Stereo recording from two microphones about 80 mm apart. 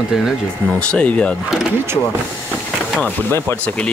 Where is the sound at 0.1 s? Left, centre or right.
Centre.